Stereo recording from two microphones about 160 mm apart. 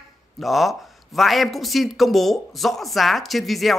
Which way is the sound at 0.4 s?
Centre (ahead or behind).